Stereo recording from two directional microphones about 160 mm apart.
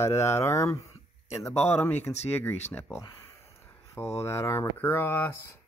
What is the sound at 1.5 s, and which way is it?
Speech, 45° left (ahead or behind).